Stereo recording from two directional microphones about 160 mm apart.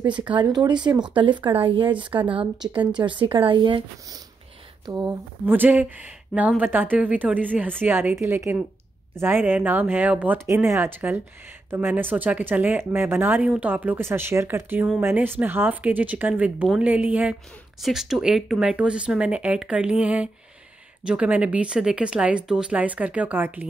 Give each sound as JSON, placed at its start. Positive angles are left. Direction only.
{"t": 0.3, "sound": "speech", "side_deg": -25}
{"t": 5.4, "sound": "speech", "side_deg": -10}